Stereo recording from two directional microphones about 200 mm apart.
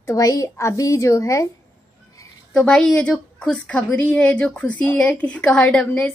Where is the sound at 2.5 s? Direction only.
5° left (ahead or behind).